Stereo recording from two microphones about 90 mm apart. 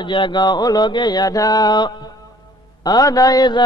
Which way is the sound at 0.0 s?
65° left (ahead or behind).